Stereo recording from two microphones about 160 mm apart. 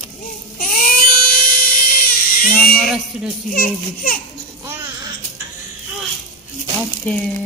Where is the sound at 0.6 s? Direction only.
55° left (ahead or behind).